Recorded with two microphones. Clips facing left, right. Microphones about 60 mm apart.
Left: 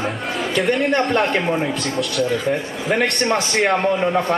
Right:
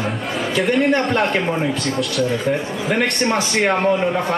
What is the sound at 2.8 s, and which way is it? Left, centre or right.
Speech, centre.